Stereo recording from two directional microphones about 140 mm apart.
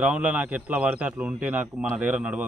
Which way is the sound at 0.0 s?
10° right (ahead or behind).